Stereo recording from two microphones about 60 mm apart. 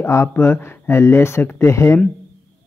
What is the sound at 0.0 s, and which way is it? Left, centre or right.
Speech, left.